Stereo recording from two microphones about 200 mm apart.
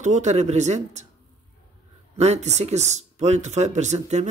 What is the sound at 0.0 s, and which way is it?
Speech, 35° right (ahead or behind).